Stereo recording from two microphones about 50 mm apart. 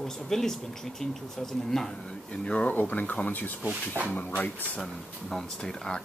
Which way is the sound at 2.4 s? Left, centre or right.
Left.